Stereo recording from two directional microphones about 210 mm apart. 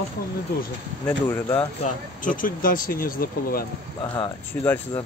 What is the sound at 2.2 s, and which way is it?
Speech, 40° left (ahead or behind).